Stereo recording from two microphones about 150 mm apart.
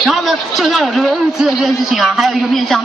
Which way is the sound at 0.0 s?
Centre (ahead or behind).